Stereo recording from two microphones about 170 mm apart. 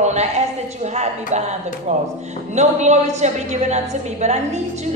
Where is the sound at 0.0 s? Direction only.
40° right (ahead or behind).